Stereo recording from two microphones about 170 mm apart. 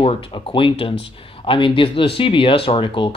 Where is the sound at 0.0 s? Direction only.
35° left (ahead or behind).